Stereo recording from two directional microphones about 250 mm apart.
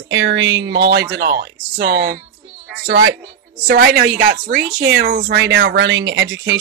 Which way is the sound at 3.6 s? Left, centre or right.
Right.